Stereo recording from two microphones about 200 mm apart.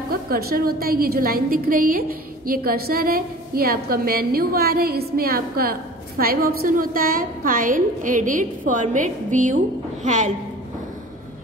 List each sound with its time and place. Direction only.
0.1 s a woman's voice: 50° right (ahead or behind)